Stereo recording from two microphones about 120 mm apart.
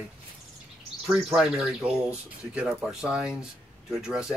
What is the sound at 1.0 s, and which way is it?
Speech, 5° right (ahead or behind).